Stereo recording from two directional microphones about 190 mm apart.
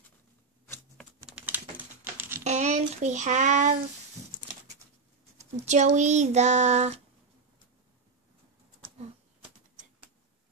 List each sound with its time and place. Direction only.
1.2 s typing: 10° right (ahead or behind)
2.4 s a sound: 35° right (ahead or behind)
2.9 s speech: 40° right (ahead or behind)
5.4 s speech: 40° right (ahead or behind)